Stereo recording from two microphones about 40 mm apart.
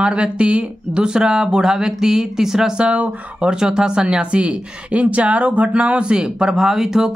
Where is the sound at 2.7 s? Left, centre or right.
Right.